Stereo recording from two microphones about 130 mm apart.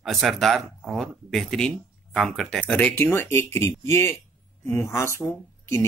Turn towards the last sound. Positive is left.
turn(degrees=20)  # may be behind; listen again after turning